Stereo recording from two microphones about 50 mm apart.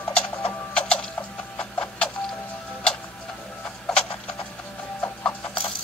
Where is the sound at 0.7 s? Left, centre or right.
Centre.